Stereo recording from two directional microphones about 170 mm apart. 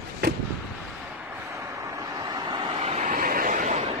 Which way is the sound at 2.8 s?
50° right (ahead or behind).